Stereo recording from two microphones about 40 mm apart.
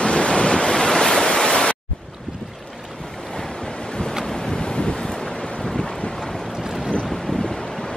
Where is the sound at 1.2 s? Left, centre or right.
Left.